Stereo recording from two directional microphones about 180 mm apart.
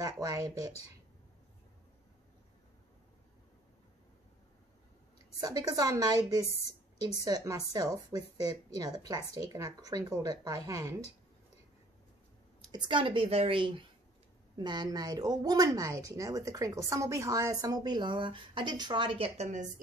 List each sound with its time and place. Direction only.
0.0 s speech: 20° right (ahead or behind)
5.4 s speech: 20° right (ahead or behind)
12.7 s speech: 25° right (ahead or behind)